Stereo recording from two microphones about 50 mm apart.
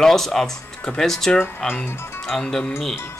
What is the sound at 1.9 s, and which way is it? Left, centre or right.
Speech, left.